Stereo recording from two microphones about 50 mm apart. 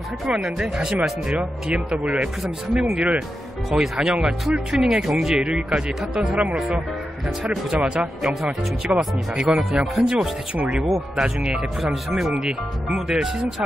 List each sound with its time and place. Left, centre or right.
0.3 s speech: centre
2.1 s speech: centre
3.7 s speech: centre; by 6.8 s right
8.2 s speech: centre
8.9 s speech: right
9.9 s speech: centre
10.5 s speech: right